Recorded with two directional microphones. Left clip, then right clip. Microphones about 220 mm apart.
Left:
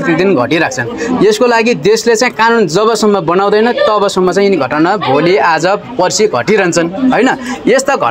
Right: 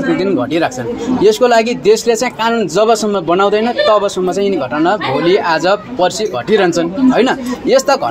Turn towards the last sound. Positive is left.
turn(degrees=35)  # may be behind; listen again after turning